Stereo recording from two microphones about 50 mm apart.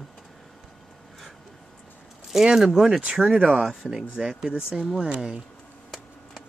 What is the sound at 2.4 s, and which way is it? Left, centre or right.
Speech, centre.